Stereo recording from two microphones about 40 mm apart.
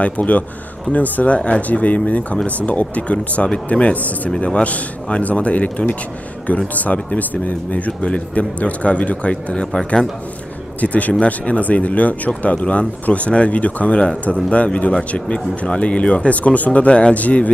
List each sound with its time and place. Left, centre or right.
0.0 s a man's voice: left
10.8 s speech: left